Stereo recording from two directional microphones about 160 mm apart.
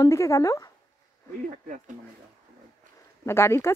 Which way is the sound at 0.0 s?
20° left (ahead or behind).